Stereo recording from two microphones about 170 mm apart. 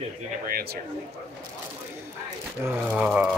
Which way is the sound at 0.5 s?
60° right (ahead or behind).